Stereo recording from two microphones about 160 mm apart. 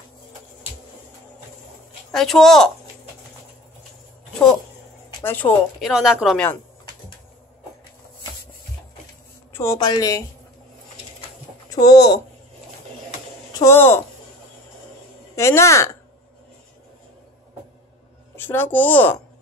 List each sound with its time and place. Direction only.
2.1 s a woman's voice: centre (ahead or behind)
5.2 s a woman's voice: 10° left (ahead or behind)
5.8 s a woman's voice: 5° right (ahead or behind)
6.3 s a woman's voice: 10° left (ahead or behind)
9.5 s speech: 15° left (ahead or behind)
11.7 s speech: 25° left (ahead or behind)
13.5 s speech: 20° left (ahead or behind)
15.3 s a woman's voice: 15° left (ahead or behind)
18.3 s a woman's voice: 15° left (ahead or behind)